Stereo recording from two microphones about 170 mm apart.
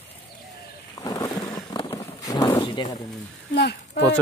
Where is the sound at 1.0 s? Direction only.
20° left (ahead or behind).